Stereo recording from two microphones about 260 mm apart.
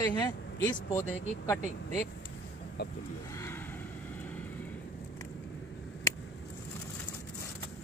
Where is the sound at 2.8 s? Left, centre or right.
Left.